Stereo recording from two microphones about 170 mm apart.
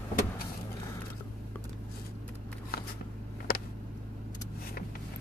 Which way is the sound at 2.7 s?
65° left (ahead or behind).